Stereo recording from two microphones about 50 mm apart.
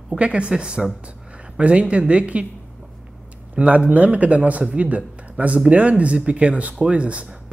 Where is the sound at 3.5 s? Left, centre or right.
Right.